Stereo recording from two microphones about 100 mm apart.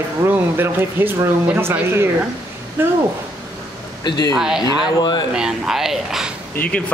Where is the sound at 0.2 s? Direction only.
20° right (ahead or behind).